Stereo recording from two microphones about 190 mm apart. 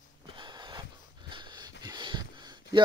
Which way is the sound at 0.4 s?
20° right (ahead or behind).